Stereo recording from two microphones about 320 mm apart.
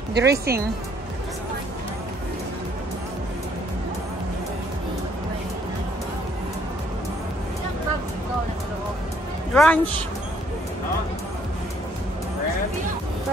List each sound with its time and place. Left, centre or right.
0.1 s speech: right
9.5 s speech: centre